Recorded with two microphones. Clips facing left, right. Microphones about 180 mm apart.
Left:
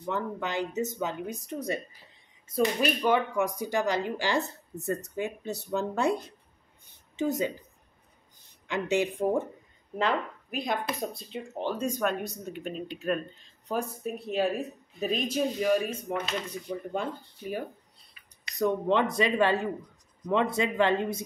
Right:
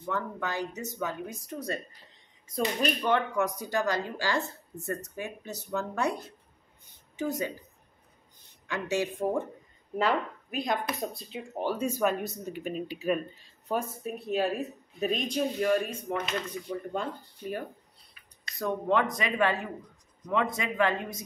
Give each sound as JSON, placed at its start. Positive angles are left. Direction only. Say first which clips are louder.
{"t": 0.0, "sound": "speech", "louder": "left 1 dB", "side_deg": 20}
{"t": 2.5, "sound": "speech", "louder": "left 3 dB", "side_deg": 5}
{"t": 7.2, "sound": "speech", "louder": "left 3 dB", "side_deg": 20}
{"t": 8.6, "sound": "speech", "louder": "left 3 dB", "side_deg": 20}
{"t": 10.0, "sound": "speech", "louder": "even", "side_deg": 0}
{"t": 18.6, "sound": "speech", "louder": "left 2 dB", "side_deg": 25}